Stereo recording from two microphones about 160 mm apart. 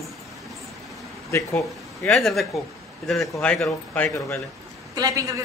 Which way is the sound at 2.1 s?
Centre (ahead or behind).